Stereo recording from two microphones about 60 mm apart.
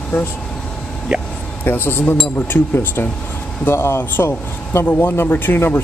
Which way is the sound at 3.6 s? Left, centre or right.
Left.